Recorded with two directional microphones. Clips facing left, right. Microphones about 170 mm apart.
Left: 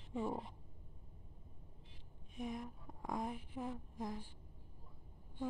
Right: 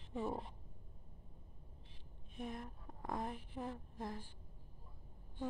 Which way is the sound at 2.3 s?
10° left (ahead or behind).